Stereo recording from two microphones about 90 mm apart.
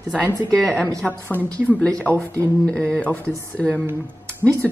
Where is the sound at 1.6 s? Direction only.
15° left (ahead or behind).